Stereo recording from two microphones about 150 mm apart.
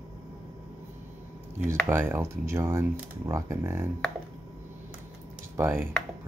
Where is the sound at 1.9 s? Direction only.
15° right (ahead or behind).